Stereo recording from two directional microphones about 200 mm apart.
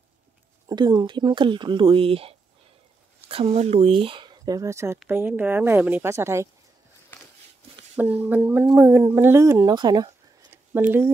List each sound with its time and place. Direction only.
0.7 s speech: 20° right (ahead or behind)
7.1 s a sound: 10° left (ahead or behind)
7.9 s speech: 10° right (ahead or behind)